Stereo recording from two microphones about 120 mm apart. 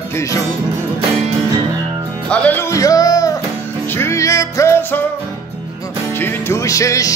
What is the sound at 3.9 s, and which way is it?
Music, 20° left (ahead or behind).